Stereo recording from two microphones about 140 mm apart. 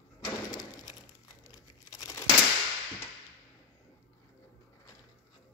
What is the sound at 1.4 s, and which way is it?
Tearing, 25° left (ahead or behind).